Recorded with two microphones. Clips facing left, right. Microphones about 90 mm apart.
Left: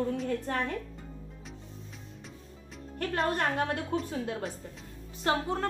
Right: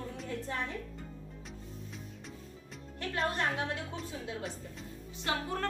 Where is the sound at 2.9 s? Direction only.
50° left (ahead or behind).